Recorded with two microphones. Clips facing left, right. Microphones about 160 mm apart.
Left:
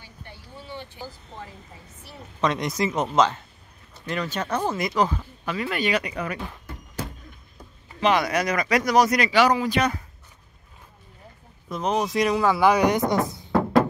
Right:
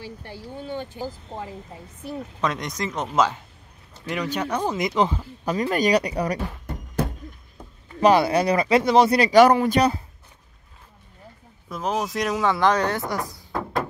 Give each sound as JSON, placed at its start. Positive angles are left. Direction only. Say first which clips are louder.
{"t": 0.0, "sound": "a sound", "louder": "right 9 dB", "side_deg": -75}
{"t": 0.7, "sound": "speech", "louder": "right 6 dB", "side_deg": -50}
{"t": 2.4, "sound": "speech", "louder": "left 4 dB", "side_deg": 0}
{"t": 4.1, "sound": "speech", "louder": "right 1 dB", "side_deg": -15}
{"t": 5.4, "sound": "speech", "louder": "right 5 dB", "side_deg": -40}
{"t": 8.0, "sound": "speech", "louder": "right 4 dB", "side_deg": -30}
{"t": 9.3, "sound": "speech", "louder": "right 5 dB", "side_deg": -50}
{"t": 9.8, "sound": "speech", "louder": "right 4 dB", "side_deg": -30}
{"t": 11.7, "sound": "speech", "louder": "left 2 dB", "side_deg": 0}